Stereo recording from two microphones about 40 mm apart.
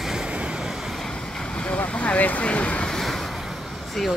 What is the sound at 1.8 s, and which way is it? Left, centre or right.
Speech, left.